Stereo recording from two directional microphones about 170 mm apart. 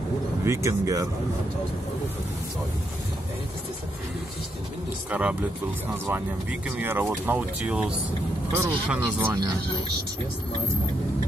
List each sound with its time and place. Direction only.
0.5 s speech: 20° right (ahead or behind)
5.1 s speech: 10° right (ahead or behind)
6.8 s speech: 10° right (ahead or behind)